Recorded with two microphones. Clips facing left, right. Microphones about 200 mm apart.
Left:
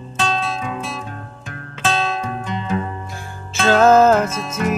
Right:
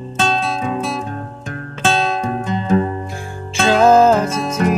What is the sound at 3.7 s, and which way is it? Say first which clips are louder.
Music: right 1 dB; 10° right (ahead or behind).